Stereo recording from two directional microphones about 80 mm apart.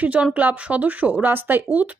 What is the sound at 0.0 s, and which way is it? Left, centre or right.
A woman's voice, centre.